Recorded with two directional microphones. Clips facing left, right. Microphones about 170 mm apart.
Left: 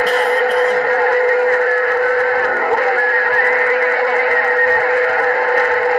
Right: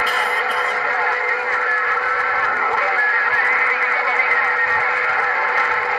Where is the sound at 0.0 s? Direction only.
45° left (ahead or behind).